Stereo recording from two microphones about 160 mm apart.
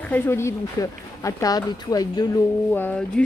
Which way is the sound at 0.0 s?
15° left (ahead or behind).